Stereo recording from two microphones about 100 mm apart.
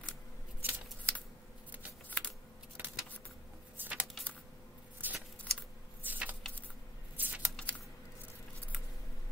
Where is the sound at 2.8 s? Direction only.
20° right (ahead or behind).